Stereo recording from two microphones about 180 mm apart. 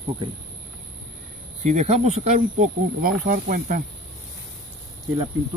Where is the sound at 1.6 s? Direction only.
40° right (ahead or behind).